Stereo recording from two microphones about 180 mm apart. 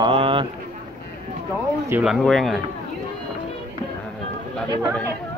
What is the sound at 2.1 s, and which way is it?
Speech, centre (ahead or behind).